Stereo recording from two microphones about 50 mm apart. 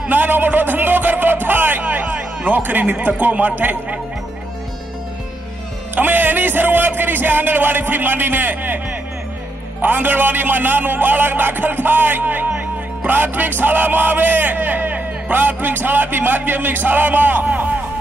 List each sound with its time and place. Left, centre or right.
0.1 s speech: right
5.9 s music: right